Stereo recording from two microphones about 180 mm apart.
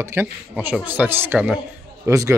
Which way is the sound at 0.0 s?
10° right (ahead or behind).